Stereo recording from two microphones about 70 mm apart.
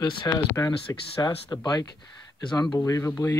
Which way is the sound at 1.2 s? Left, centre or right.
Left.